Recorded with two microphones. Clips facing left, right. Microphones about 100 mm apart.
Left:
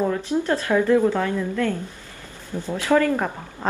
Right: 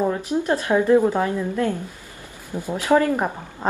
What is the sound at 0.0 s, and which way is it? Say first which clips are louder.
A woman's voice: even; 15° right (ahead or behind).